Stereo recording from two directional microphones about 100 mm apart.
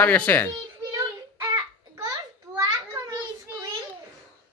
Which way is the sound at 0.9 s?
30° right (ahead or behind).